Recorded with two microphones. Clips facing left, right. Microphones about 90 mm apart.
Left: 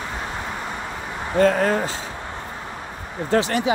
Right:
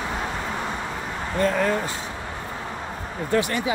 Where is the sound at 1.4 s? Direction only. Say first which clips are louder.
Left 4 dB; 45° left (ahead or behind).